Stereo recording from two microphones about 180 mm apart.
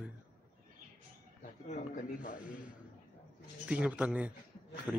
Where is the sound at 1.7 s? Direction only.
45° left (ahead or behind).